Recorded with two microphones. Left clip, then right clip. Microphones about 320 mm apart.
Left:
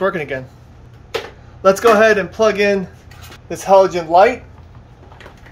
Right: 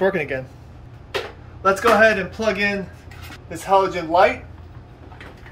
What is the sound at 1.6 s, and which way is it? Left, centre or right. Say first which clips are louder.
Speech: left 4 dB; left.